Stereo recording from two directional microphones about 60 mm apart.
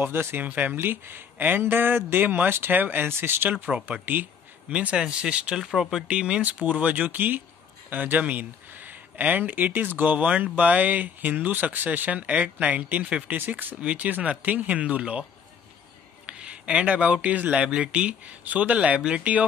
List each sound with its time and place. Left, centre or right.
0.0 s speech: right
0.4 s speech: right
3.6 s speech: right
4.6 s speech: centre
5.6 s speech: centre
6.0 s speech: centre
16.3 s speech: centre